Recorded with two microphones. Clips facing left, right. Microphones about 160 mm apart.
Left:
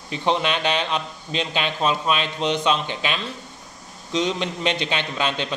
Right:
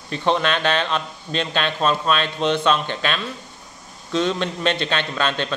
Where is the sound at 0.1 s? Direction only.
15° left (ahead or behind).